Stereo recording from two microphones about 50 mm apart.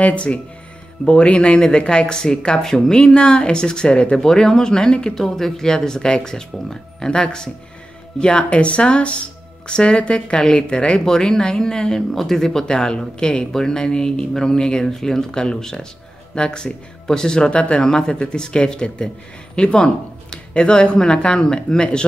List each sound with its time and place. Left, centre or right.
0.0 s speech: left